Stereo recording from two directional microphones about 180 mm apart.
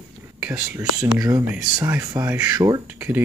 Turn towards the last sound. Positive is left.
turn(degrees=-10)  # may be behind; listen again after turning